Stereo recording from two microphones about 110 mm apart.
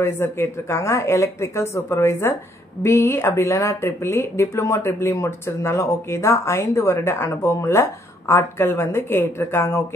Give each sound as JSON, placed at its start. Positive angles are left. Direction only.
{"t": 0.0, "sound": "speech", "side_deg": 25}